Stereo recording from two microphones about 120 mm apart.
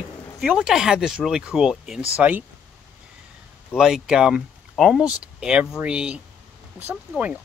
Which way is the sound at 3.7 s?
5° right (ahead or behind).